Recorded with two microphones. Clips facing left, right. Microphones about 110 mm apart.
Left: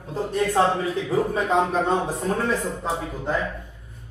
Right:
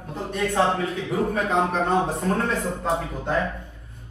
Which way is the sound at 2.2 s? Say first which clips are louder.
Even; 5° left (ahead or behind).